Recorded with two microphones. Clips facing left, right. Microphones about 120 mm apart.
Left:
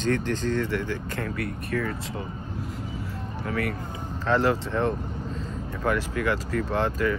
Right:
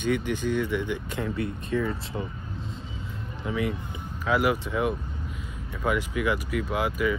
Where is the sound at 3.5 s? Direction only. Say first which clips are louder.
Right 1 dB; 15° right (ahead or behind).